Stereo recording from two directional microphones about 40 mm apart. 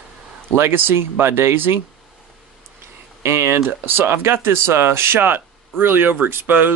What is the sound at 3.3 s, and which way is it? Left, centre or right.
Speech, right.